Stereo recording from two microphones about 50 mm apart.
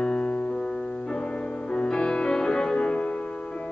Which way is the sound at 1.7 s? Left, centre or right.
Centre.